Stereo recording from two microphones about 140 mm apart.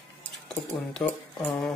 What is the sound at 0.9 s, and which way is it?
Speech, 5° left (ahead or behind).